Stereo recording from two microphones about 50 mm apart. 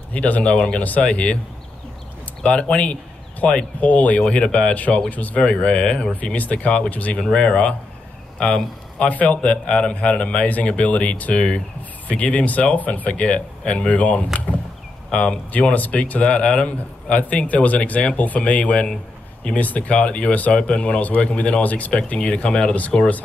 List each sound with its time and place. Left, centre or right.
0.1 s speech: left
2.4 s speech: left
4.3 s speech: left
4.7 s speech: left
5.4 s speech: left
7.2 s a man's voice: centre